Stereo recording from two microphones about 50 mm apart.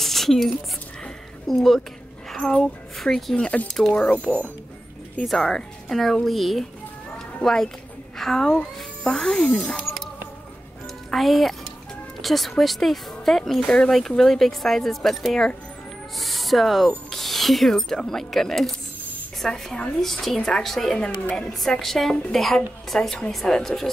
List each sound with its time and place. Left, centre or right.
0.0 s a sound: centre
1.5 s speech: centre
3.3 s speech: centre
5.2 s a woman's voice: centre
11.1 s a woman's voice: centre
21.0 s a woman's voice: centre